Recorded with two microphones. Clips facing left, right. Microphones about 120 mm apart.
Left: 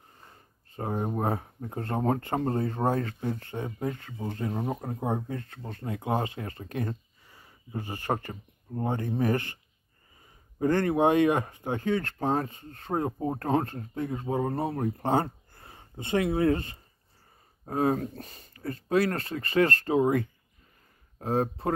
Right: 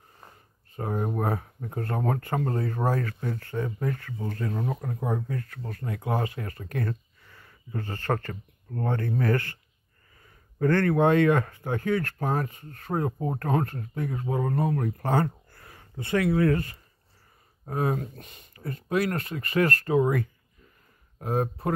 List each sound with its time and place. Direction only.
0.7 s speech: 30° left (ahead or behind)